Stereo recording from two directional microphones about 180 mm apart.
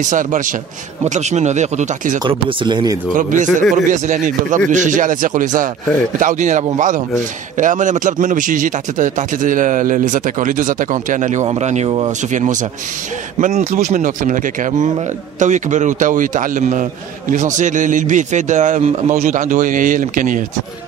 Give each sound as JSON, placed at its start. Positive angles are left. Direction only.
{"t": 0.0, "sound": "a man's voice", "side_deg": -45}
{"t": 2.2, "sound": "speech", "side_deg": -25}
{"t": 3.2, "sound": "a man's voice", "side_deg": -45}